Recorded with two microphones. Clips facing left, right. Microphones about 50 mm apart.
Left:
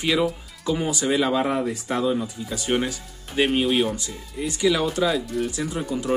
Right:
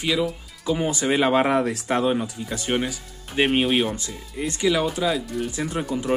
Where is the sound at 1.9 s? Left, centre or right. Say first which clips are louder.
Right 1 dB; right.